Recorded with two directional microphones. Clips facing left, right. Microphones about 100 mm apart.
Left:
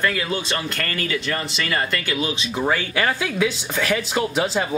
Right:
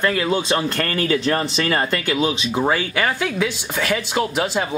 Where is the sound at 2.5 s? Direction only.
10° right (ahead or behind).